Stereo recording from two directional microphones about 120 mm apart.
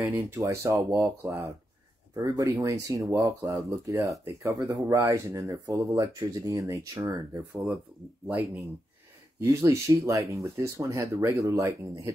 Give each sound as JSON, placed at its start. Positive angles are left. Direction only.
{"t": 0.0, "sound": "speech", "side_deg": -25}
{"t": 9.4, "sound": "speech", "side_deg": -25}